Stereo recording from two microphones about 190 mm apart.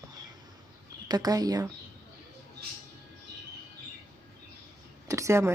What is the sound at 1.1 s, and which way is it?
Speech, 20° right (ahead or behind).